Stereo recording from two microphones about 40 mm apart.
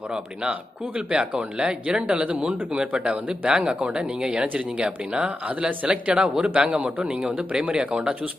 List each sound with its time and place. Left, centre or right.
0.1 s speech: centre
0.9 s speech: right
5.5 s speech: right
5.9 s speech: right